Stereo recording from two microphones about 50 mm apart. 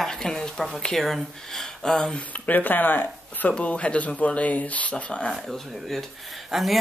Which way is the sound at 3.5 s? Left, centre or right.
Left.